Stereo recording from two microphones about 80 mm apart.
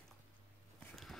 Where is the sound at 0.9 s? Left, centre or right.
Centre.